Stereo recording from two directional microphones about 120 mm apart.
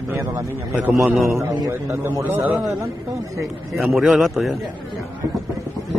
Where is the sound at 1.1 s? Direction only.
Centre (ahead or behind).